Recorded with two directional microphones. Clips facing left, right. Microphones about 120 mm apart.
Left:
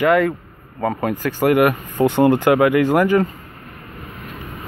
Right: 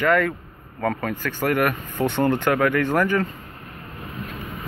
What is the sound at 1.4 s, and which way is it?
Speech, 15° left (ahead or behind).